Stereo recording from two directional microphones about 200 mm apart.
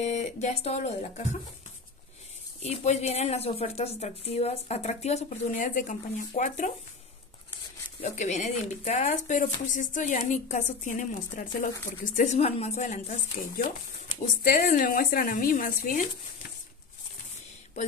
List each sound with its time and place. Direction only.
0.0 s speech: 35° left (ahead or behind)
2.6 s speech: 35° left (ahead or behind)
8.0 s speech: 35° left (ahead or behind)
14.4 s a woman's voice: 45° left (ahead or behind)